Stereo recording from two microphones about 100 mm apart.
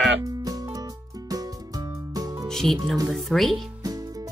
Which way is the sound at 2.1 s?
40° right (ahead or behind).